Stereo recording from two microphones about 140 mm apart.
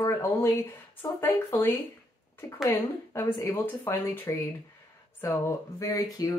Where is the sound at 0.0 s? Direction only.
20° left (ahead or behind).